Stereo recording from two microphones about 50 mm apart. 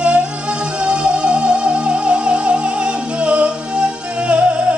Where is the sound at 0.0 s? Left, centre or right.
Right.